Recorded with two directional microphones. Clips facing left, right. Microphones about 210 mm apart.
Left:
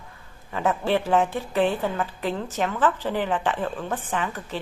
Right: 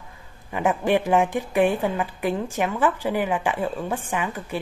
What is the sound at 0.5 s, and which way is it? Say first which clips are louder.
A woman's voice: right 2 dB; 15° right (ahead or behind).